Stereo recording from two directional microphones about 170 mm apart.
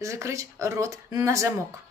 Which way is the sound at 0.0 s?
15° right (ahead or behind).